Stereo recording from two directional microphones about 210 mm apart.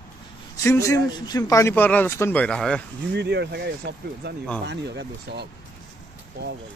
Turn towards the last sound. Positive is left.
turn(degrees=-50)  # may be behind; listen again after turning